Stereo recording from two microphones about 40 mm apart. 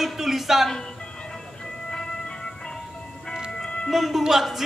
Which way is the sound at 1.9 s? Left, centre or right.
Centre.